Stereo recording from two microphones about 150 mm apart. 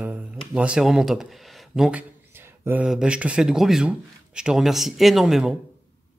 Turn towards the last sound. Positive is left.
turn(degrees=-5)  # may be behind; listen again after turning